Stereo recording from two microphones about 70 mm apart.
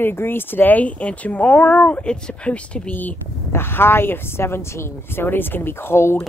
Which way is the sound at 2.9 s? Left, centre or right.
Left.